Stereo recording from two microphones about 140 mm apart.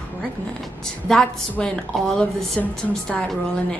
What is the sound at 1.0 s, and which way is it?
A woman's voice, 5° left (ahead or behind).